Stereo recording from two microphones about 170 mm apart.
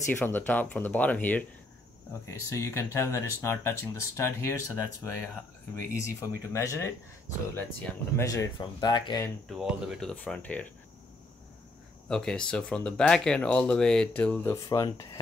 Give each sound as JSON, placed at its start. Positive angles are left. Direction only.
{"t": 0.1, "sound": "speech", "side_deg": 10}
{"t": 8.2, "sound": "speech", "side_deg": 20}
{"t": 9.5, "sound": "speech", "side_deg": -5}
{"t": 12.1, "sound": "speech", "side_deg": 5}